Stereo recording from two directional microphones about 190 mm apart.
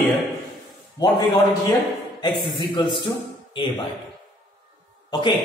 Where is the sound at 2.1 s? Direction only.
25° left (ahead or behind).